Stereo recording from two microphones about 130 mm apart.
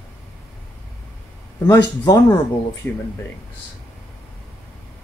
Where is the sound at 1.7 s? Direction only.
30° left (ahead or behind).